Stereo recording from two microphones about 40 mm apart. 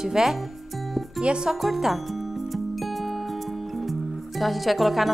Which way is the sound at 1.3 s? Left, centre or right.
Right.